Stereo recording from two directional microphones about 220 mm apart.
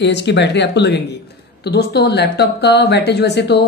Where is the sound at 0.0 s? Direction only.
50° left (ahead or behind).